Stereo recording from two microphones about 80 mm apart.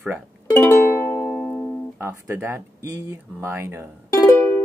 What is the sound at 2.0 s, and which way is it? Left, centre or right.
Speech, right.